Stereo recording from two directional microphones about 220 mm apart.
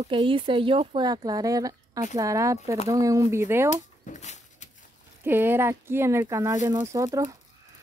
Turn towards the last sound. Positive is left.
turn(degrees=-15)  # may be behind; listen again after turning